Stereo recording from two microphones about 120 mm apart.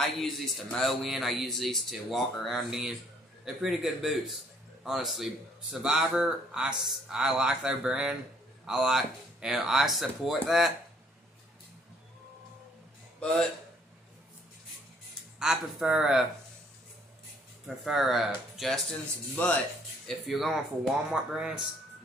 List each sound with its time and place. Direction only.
0.2 s speech: centre (ahead or behind)
13.2 s speech: 5° left (ahead or behind)
15.3 s speech: 5° right (ahead or behind)
17.6 s speech: centre (ahead or behind)